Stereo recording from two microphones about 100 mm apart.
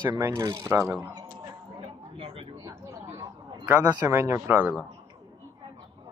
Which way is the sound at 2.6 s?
35° right (ahead or behind).